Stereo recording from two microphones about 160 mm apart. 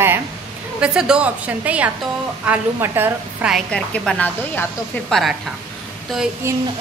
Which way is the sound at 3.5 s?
5° left (ahead or behind).